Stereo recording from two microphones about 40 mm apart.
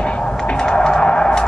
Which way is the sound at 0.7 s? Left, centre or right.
Left.